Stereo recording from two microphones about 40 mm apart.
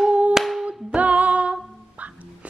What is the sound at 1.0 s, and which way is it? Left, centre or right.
Female singing, right.